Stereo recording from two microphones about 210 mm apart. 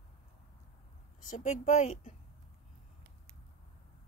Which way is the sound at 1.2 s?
35° left (ahead or behind).